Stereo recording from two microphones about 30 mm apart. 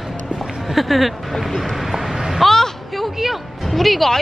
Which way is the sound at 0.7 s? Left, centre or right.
Centre.